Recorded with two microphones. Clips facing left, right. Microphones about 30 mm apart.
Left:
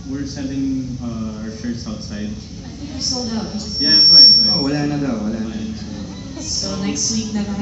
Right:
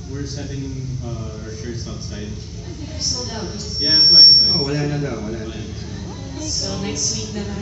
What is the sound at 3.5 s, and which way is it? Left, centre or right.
Speech, left.